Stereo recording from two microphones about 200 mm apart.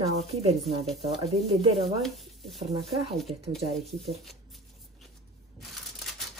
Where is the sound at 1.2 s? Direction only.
Centre (ahead or behind).